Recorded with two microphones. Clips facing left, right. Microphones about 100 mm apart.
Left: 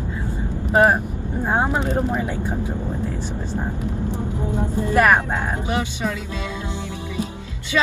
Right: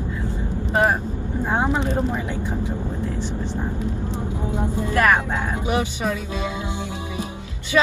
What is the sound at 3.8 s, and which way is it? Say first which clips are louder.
Vehicle: left 1 dB; 20° right (ahead or behind).